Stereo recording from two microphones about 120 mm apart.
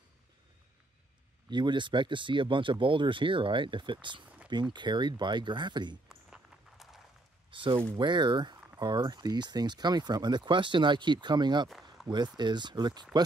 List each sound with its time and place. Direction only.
1.5 s speech: 40° right (ahead or behind)
6.0 s walk: centre (ahead or behind)
7.5 s speech: 45° right (ahead or behind)
12.0 s a sound: 5° right (ahead or behind)
12.4 s speech: 40° right (ahead or behind)